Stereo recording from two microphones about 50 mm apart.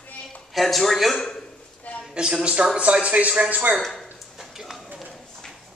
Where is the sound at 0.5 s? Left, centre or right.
Centre.